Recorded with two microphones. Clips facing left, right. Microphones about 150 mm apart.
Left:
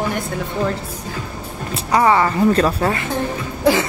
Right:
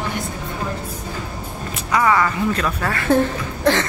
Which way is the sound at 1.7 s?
30° left (ahead or behind).